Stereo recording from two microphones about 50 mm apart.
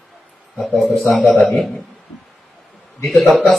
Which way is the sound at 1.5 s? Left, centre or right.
Centre.